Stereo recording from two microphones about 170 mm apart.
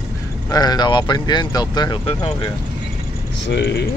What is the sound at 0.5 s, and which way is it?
Speech, 25° left (ahead or behind).